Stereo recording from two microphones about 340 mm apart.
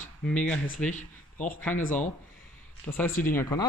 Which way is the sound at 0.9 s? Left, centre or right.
Left.